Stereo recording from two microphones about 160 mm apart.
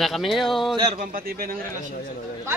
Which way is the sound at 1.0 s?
65° right (ahead or behind).